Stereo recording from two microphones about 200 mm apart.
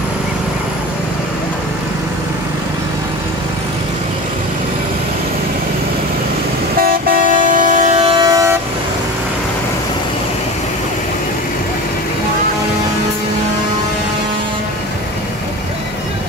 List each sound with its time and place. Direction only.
6.8 s vehicle: 45° right (ahead or behind); by 8.5 s 15° right (ahead or behind)